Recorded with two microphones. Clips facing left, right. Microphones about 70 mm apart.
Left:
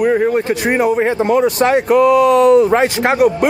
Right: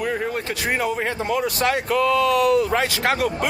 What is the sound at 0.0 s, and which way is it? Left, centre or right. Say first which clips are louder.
Speech: left 11 dB; left.